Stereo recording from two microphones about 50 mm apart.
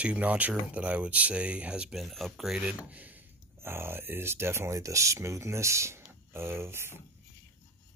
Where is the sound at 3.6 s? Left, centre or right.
Right.